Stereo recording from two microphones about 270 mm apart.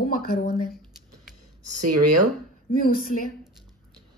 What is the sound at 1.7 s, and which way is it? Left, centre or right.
Speech, right.